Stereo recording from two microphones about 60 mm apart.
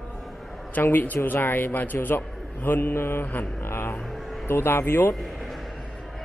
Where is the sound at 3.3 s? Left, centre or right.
Left.